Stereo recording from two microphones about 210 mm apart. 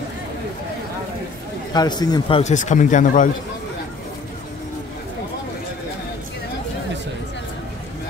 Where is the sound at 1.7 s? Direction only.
20° left (ahead or behind).